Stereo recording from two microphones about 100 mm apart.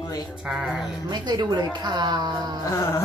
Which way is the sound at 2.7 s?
30° left (ahead or behind).